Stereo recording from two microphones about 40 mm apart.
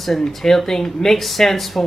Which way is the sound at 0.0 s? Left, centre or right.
Centre.